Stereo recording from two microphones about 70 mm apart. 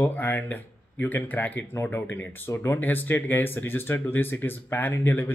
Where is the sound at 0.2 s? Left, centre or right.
Left.